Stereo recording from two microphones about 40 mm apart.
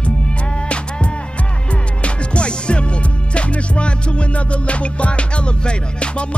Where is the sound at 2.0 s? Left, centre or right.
Left.